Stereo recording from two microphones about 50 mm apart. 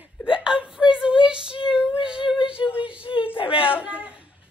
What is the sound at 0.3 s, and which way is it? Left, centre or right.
Whimper, centre.